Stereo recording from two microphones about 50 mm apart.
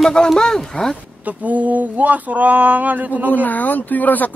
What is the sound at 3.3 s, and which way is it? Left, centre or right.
Speech, left.